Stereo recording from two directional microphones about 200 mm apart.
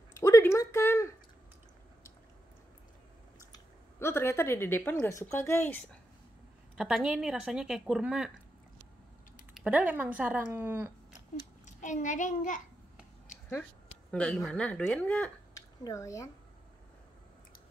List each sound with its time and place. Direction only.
0.1 s a sound: 15° left (ahead or behind)
3.5 s speech: 10° left (ahead or behind)
6.8 s a woman's voice: 5° right (ahead or behind)
9.5 s speech: 5° right (ahead or behind)
11.6 s a child's voice: 40° left (ahead or behind)
14.1 s speech: 5° left (ahead or behind)